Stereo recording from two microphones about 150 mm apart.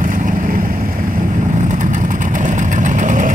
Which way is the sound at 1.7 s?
55° right (ahead or behind).